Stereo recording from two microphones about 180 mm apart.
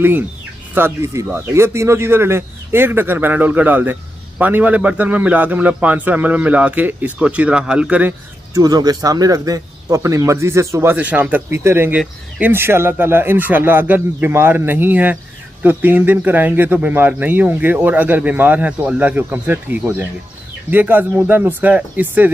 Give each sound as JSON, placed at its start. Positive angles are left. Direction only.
{"t": 0.7, "sound": "speech", "side_deg": -15}
{"t": 8.5, "sound": "speech", "side_deg": -20}